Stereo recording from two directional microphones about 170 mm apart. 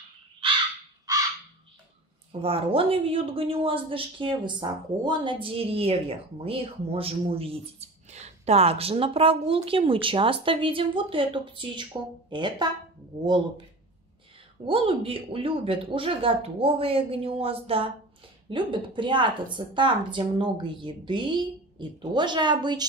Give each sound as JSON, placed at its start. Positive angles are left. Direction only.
{"t": 0.4, "sound": "crow", "side_deg": -30}
{"t": 2.4, "sound": "speech", "side_deg": -35}
{"t": 14.7, "sound": "a woman's voice", "side_deg": -35}